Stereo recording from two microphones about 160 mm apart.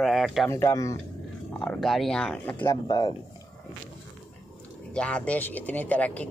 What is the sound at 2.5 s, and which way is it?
Speech, 25° left (ahead or behind).